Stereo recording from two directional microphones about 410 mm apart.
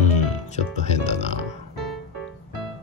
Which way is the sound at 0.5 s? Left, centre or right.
Centre.